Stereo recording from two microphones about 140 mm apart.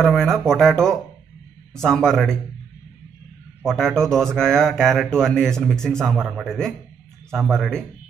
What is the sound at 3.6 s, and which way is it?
Speech, 5° left (ahead or behind).